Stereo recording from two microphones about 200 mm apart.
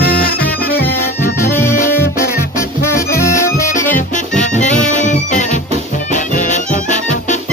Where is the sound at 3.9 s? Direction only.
40° left (ahead or behind).